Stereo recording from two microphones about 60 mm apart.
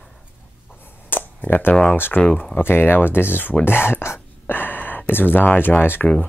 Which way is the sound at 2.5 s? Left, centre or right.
Left.